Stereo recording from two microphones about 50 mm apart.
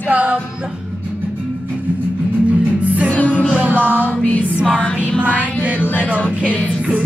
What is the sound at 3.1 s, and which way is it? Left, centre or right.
Music, left.